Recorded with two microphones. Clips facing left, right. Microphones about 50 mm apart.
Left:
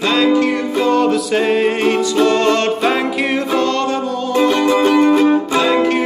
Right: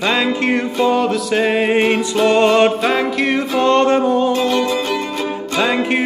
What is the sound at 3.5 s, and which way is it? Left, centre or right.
Music, right.